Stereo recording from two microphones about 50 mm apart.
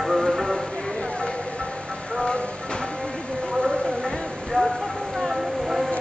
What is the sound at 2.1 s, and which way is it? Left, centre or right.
Vehicle, centre.